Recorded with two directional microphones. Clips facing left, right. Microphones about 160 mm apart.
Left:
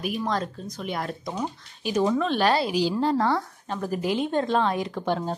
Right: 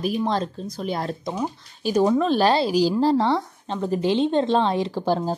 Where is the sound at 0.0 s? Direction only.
30° right (ahead or behind).